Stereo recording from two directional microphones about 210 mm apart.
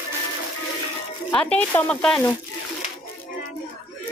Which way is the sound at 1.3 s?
5° left (ahead or behind).